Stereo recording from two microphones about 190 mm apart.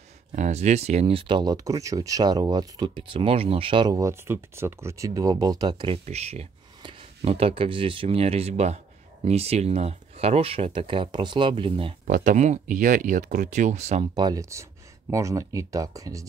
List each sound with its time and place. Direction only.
0.3 s speech: 35° right (ahead or behind)
6.0 s speech: 35° right (ahead or behind)
12.1 s speech: 40° right (ahead or behind)
14.1 s speech: 20° right (ahead or behind)